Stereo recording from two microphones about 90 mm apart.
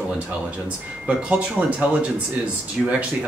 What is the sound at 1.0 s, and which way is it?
Speech, 15° right (ahead or behind).